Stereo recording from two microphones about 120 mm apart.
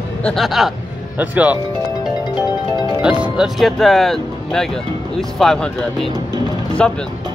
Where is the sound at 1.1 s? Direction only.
15° right (ahead or behind).